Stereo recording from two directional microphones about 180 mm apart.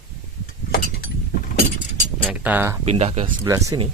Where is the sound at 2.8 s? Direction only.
35° right (ahead or behind).